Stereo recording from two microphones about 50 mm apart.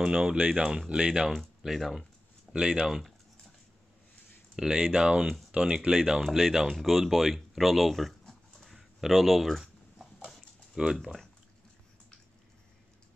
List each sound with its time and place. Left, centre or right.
0.0 s speech: centre
1.6 s speech: centre
2.5 s speech: centre
4.6 s speech: centre